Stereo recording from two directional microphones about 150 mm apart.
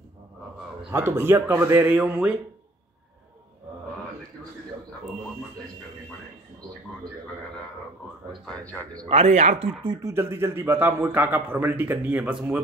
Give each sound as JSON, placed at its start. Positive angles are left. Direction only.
{"t": 0.9, "sound": "a man's voice", "side_deg": -15}
{"t": 8.5, "sound": "a man's voice", "side_deg": 10}
{"t": 9.1, "sound": "speech", "side_deg": -50}
{"t": 9.8, "sound": "a man's voice", "side_deg": -20}